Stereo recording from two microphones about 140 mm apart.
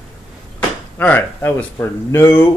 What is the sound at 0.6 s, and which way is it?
Speech, 10° left (ahead or behind).